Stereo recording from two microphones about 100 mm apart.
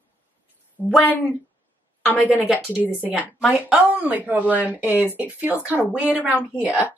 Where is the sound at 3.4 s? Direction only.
5° right (ahead or behind).